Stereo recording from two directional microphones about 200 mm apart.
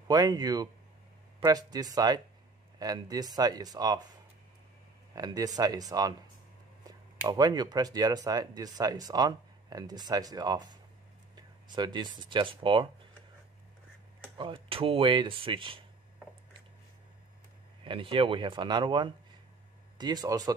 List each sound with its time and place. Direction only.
0.1 s speech: 20° right (ahead or behind)
5.1 s speech: 20° right (ahead or behind)
14.3 s speech: 25° right (ahead or behind)
17.8 s speech: 25° right (ahead or behind)